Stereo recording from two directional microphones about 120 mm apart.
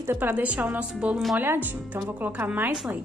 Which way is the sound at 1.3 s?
20° right (ahead or behind).